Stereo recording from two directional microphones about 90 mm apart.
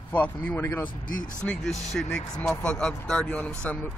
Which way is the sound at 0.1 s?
20° left (ahead or behind).